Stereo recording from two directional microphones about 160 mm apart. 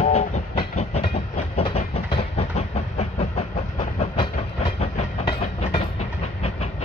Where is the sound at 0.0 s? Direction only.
45° left (ahead or behind).